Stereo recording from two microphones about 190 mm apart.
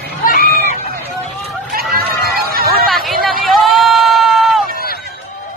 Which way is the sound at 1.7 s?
50° right (ahead or behind).